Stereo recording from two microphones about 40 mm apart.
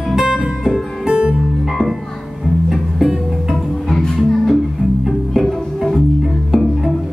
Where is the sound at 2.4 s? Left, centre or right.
Centre.